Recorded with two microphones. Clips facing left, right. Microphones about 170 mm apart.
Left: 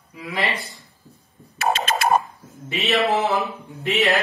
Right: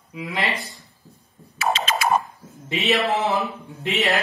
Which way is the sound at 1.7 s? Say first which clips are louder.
Left 2 dB; 50° left (ahead or behind).